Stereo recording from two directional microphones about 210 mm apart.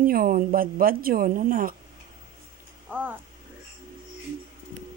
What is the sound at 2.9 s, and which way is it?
Speech, 5° right (ahead or behind).